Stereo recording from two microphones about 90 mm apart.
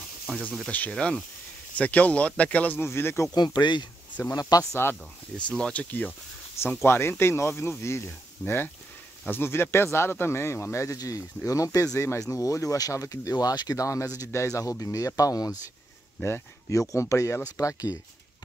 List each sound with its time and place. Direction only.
0.7 s speech: 15° left (ahead or behind)
3.3 s speech: 50° left (ahead or behind)
4.4 s speech: 45° left (ahead or behind)
5.5 s speech: 15° left (ahead or behind); by 15.5 s 40° left (ahead or behind)
16.2 s speech: 25° left (ahead or behind)
16.7 s speech: 35° left (ahead or behind)